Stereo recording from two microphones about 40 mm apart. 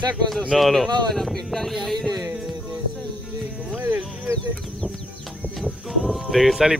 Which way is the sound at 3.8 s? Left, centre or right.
Right.